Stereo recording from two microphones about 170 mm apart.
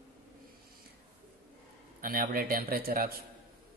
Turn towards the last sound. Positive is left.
turn(degrees=-60)  # may be behind; listen again after turning